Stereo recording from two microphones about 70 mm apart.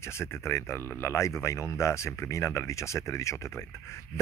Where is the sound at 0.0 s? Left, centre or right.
Left.